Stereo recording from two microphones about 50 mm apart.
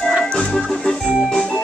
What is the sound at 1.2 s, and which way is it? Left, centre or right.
Organ, centre.